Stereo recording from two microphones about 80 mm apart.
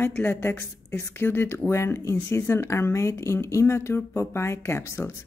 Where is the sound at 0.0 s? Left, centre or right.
Left.